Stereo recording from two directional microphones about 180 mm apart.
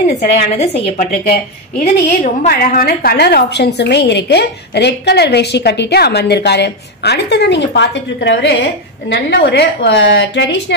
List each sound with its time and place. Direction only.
0.2 s a woman's voice: 40° left (ahead or behind); by 8.5 s 80° left
9.3 s a woman's voice: 65° left (ahead or behind); by 10.6 s 80° left